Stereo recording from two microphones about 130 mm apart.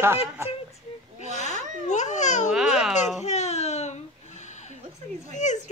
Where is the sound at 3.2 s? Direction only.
60° left (ahead or behind).